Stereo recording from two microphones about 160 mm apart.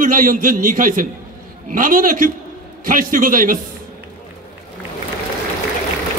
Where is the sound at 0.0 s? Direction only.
60° right (ahead or behind).